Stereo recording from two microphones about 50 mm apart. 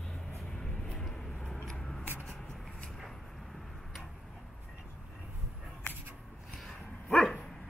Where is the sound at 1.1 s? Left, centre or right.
Centre.